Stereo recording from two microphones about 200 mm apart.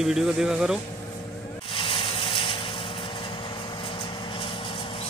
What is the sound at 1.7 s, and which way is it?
Vehicle, 25° left (ahead or behind).